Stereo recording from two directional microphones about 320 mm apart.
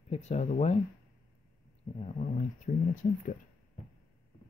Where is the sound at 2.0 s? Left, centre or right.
Left.